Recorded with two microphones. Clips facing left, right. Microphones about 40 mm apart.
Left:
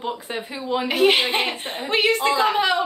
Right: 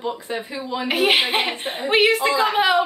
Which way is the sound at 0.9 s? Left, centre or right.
Centre.